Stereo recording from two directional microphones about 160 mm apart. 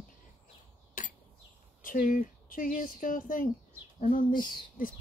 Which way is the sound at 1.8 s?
60° left (ahead or behind).